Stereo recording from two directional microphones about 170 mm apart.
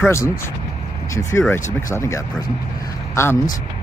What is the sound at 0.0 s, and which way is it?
Speech, 15° left (ahead or behind).